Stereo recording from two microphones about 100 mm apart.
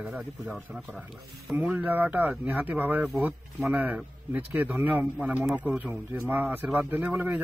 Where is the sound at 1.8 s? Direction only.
15° right (ahead or behind).